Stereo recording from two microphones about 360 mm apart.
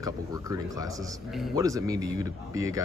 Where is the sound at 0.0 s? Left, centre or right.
Centre.